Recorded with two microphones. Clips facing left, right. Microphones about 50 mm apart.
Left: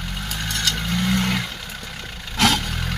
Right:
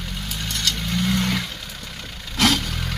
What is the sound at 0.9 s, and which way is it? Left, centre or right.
Vehicle, left.